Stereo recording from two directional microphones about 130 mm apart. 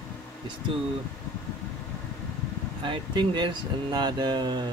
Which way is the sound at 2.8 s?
35° right (ahead or behind).